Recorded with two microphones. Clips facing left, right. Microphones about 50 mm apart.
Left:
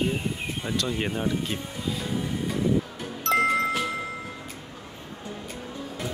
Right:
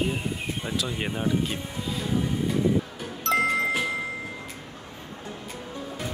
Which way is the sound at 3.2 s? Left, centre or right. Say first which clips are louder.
Left 1 dB; centre.